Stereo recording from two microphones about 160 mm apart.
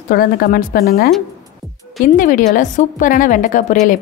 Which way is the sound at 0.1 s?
70° left (ahead or behind).